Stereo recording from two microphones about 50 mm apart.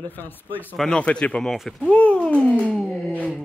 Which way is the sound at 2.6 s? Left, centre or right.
Centre.